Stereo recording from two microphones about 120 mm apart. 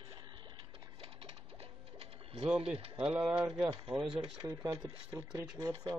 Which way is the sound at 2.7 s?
50° right (ahead or behind).